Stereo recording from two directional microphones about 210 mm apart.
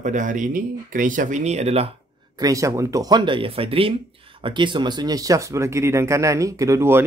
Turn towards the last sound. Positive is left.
turn(degrees=-10)  # may be behind; listen again after turning